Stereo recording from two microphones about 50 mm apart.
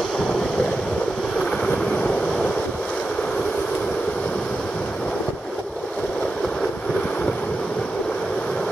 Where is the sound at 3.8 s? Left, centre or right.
Left.